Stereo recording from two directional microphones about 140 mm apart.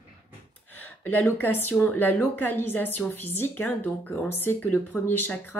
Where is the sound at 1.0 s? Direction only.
15° left (ahead or behind).